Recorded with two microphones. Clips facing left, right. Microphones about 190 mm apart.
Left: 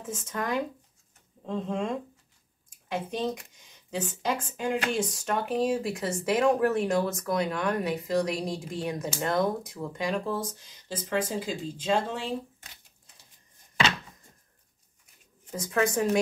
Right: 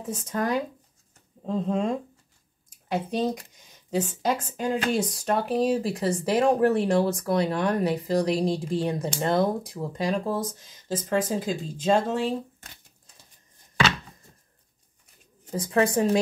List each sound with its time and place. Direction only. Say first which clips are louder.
0.0 s speech: right 5 dB; 35° right (ahead or behind)
15.5 s speech: right 4 dB; 30° right (ahead or behind)